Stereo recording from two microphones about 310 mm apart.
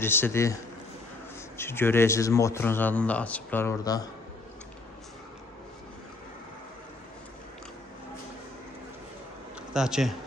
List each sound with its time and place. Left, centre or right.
0.0 s a man's voice: centre
1.6 s a man's voice: centre
9.8 s speech: centre